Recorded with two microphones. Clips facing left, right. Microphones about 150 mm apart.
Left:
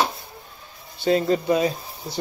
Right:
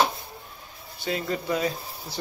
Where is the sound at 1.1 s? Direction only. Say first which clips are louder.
Left 8 dB; 25° left (ahead or behind).